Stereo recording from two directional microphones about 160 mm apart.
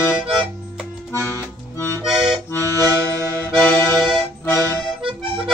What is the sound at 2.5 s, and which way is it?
Accordion, 15° left (ahead or behind).